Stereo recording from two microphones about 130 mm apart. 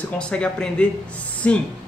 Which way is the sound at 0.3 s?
10° left (ahead or behind).